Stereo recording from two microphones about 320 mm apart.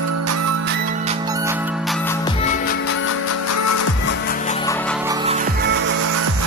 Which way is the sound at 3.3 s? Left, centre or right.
Left.